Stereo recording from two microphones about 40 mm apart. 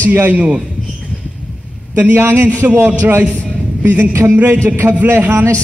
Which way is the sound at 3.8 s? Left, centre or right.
Right.